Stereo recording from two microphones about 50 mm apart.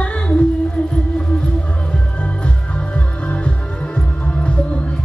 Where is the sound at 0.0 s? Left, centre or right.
Left.